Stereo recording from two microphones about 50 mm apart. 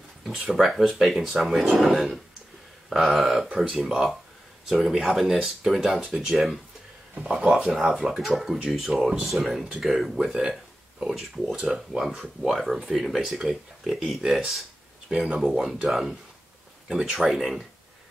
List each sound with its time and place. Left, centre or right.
0.5 s speech: centre
2.9 s speech: centre
7.2 s speech: centre
15.0 s speech: centre